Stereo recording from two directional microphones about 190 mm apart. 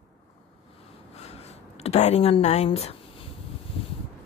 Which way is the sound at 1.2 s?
35° left (ahead or behind).